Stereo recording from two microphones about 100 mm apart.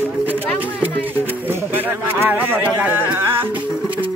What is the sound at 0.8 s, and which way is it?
Music, 20° right (ahead or behind).